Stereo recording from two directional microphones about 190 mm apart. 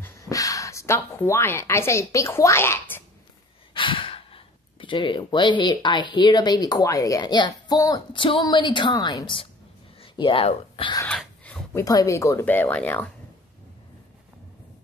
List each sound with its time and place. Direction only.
0.0 s speech: 15° left (ahead or behind)
3.7 s speech: 25° left (ahead or behind)
11.1 s a sound: 5° left (ahead or behind)
11.8 s speech: 20° left (ahead or behind)